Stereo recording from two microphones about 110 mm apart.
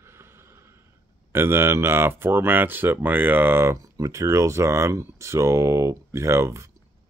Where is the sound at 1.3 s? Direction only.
20° right (ahead or behind).